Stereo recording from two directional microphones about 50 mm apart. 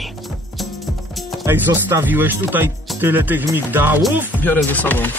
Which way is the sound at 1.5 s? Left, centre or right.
Right.